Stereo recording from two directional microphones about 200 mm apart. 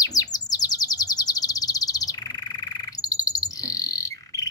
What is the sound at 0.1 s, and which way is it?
Chirp, 20° left (ahead or behind).